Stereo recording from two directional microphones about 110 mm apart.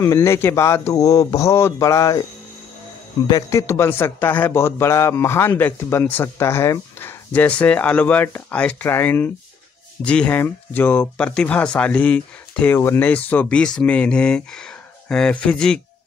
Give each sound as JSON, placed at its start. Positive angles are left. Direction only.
{"t": 0.0, "sound": "speech", "side_deg": 25}
{"t": 3.3, "sound": "speech", "side_deg": 30}
{"t": 12.7, "sound": "speech", "side_deg": 25}